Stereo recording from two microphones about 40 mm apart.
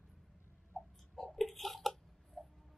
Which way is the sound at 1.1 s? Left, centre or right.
Centre.